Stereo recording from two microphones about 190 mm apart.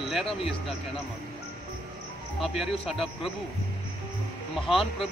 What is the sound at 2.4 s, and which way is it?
Speech, centre (ahead or behind).